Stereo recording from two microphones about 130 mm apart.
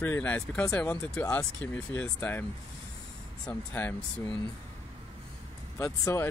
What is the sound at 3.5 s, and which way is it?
Speech, 15° left (ahead or behind).